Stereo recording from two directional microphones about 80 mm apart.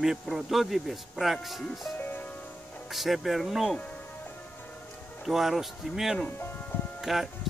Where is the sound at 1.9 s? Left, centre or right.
Left.